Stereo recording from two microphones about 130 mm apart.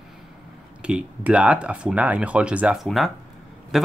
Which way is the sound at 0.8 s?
10° right (ahead or behind).